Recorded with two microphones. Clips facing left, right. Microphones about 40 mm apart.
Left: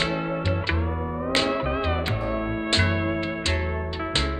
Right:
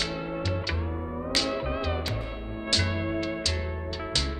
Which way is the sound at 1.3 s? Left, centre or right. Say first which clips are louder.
Left 5 dB; left.